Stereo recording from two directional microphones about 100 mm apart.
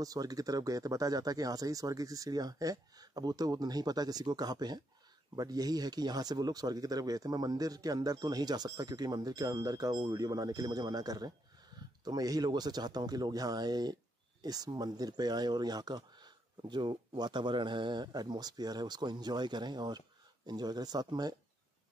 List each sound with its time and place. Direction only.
0.0 s speech: 35° right (ahead or behind)